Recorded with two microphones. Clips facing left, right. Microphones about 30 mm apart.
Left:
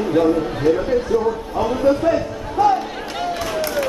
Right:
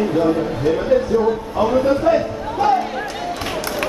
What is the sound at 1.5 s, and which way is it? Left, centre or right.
Speech, centre.